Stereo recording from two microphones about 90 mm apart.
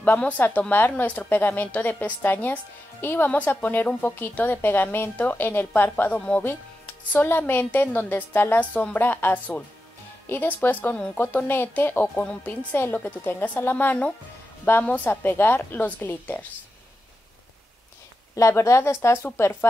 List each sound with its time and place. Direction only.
0.0 s a woman's voice: 20° left (ahead or behind)
18.3 s a woman's voice: 35° left (ahead or behind)